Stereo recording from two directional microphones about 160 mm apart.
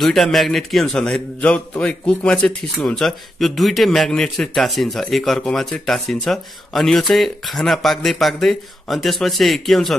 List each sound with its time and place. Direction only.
0.0 s a man's voice: centre (ahead or behind)